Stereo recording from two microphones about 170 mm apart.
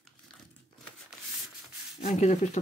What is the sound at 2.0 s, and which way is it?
Speech, 40° left (ahead or behind).